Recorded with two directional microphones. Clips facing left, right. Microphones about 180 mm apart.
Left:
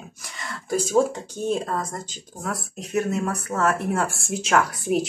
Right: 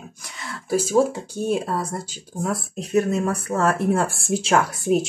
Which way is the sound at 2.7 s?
30° right (ahead or behind).